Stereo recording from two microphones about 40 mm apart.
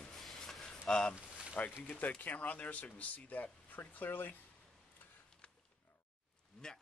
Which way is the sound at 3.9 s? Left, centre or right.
Left.